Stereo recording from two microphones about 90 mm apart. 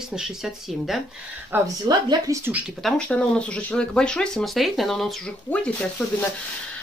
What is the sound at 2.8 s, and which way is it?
Speech, 10° left (ahead or behind).